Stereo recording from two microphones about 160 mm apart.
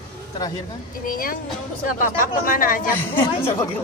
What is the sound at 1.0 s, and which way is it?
Speech, 60° left (ahead or behind).